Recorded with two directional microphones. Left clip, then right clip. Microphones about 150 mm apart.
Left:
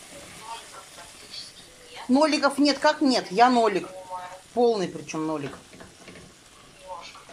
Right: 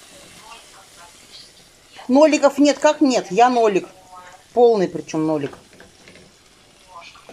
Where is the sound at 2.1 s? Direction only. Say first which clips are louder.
Right 8 dB; 25° right (ahead or behind).